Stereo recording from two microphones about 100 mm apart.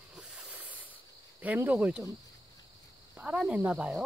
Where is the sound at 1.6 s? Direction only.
15° right (ahead or behind).